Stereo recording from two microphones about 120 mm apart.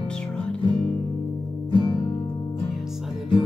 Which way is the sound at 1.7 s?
40° left (ahead or behind).